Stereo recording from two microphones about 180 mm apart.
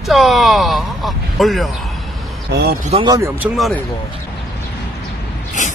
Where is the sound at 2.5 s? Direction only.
65° right (ahead or behind).